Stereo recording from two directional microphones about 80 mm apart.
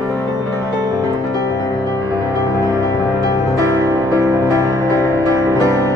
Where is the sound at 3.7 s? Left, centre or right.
Right.